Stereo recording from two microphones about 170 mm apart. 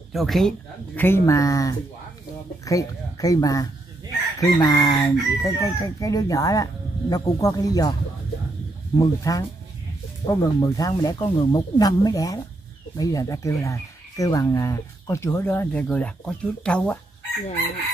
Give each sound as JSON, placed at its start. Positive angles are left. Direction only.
{"t": 0.1, "sound": "speech", "side_deg": 0}
{"t": 1.0, "sound": "speech", "side_deg": 15}
{"t": 8.9, "sound": "speech", "side_deg": 20}